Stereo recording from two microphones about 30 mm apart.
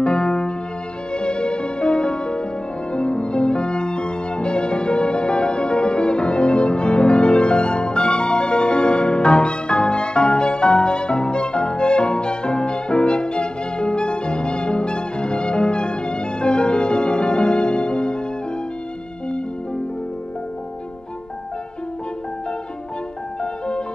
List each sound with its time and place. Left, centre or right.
0.0 s music: left